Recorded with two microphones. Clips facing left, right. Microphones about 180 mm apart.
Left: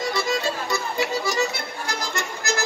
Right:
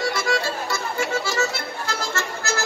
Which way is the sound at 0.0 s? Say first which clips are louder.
Right 1 dB; 20° left (ahead or behind).